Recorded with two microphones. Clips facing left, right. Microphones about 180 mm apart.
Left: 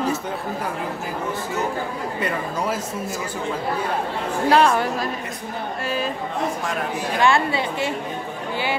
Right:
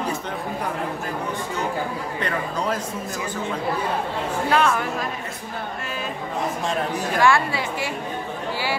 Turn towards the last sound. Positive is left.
turn(degrees=20)  # may be behind; listen again after turning